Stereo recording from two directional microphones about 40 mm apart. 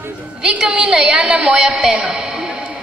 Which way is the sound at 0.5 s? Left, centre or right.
Right.